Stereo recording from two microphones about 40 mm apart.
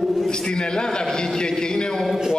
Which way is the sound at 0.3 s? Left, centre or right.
Centre.